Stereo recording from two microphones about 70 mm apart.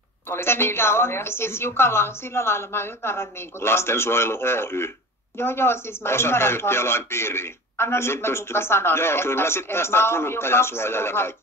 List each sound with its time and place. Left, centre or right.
0.3 s speech: left